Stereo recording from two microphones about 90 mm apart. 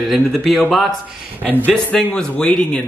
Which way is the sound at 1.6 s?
10° left (ahead or behind).